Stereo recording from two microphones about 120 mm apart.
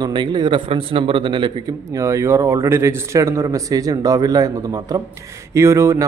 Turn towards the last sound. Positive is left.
turn(degrees=-25)  # may be behind; listen again after turning